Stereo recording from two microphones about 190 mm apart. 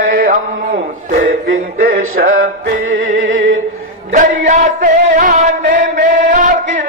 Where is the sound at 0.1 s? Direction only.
45° right (ahead or behind).